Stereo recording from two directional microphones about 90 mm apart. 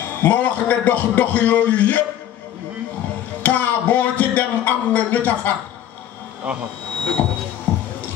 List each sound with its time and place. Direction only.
0.2 s a man's voice: 15° left (ahead or behind)
3.4 s speech: 15° left (ahead or behind)
7.2 s a sound: 25° left (ahead or behind)
7.7 s music: 20° left (ahead or behind)